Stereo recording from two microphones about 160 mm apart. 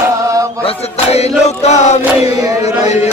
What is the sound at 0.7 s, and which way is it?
Chant, 40° left (ahead or behind).